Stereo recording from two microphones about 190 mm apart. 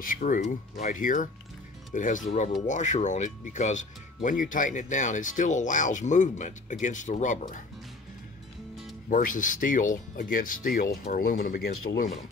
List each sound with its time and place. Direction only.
0.0 s speech: 45° left (ahead or behind)
9.1 s speech: 45° left (ahead or behind)